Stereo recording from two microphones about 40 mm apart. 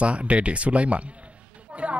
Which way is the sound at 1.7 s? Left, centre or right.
Right.